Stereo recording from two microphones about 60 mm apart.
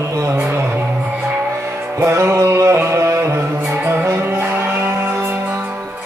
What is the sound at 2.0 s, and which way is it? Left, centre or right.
Music, right.